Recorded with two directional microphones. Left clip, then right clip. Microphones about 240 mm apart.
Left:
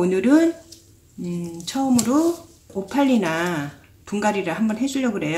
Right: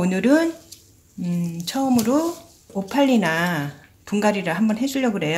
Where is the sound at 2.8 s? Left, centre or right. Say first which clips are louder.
Right 1 dB; right.